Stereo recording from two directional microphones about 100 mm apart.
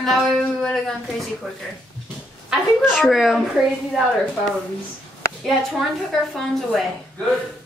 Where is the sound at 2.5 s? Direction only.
5° right (ahead or behind).